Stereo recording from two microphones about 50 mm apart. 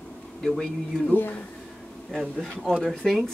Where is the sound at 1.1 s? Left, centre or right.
Left.